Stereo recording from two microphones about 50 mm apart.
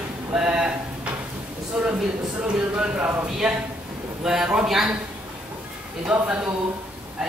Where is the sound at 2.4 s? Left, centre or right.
Right.